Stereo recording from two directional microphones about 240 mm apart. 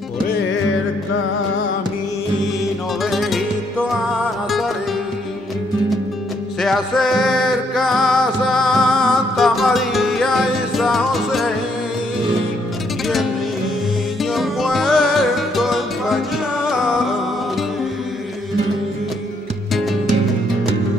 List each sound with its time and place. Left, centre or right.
3.0 s music: centre
6.6 s music: centre
14.3 s music: centre
19.7 s music: centre